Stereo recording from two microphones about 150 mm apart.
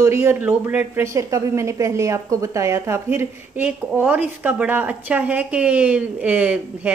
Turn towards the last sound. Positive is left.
turn(degrees=-10)  # may be behind; listen again after turning